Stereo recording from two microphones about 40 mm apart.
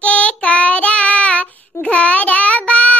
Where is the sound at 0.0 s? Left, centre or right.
Left.